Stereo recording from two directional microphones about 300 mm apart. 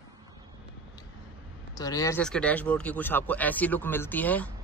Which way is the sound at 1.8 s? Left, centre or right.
Centre.